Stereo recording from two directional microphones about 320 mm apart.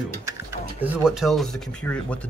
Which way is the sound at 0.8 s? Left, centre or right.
Centre.